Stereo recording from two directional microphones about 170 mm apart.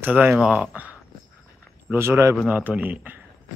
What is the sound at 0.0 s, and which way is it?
Speech, 10° right (ahead or behind).